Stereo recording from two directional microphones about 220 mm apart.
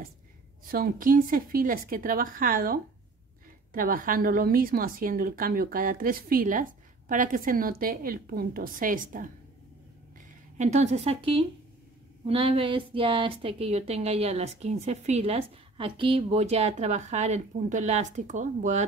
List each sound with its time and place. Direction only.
0.7 s a woman's voice: 40° right (ahead or behind)
10.6 s a woman's voice: 30° right (ahead or behind)